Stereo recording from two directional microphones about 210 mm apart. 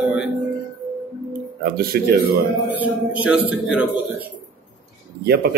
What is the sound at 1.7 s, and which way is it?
Speech, 45° right (ahead or behind).